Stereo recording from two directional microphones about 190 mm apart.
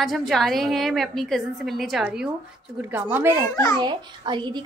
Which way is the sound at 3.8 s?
25° right (ahead or behind).